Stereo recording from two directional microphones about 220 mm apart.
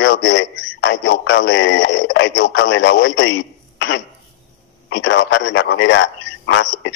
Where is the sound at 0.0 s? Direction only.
55° left (ahead or behind).